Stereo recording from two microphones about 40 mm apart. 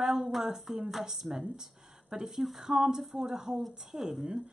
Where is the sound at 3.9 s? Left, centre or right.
Centre.